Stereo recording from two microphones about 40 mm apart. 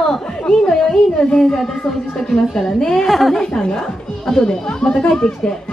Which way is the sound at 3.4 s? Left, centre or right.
Centre.